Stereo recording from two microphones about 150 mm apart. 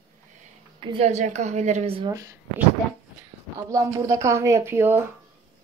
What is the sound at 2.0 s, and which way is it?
Speech, 20° right (ahead or behind).